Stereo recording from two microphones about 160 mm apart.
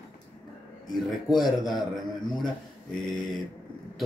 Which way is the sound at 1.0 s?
Centre (ahead or behind).